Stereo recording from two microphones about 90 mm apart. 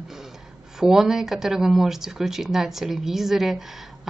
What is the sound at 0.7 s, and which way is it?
Speech, 5° right (ahead or behind).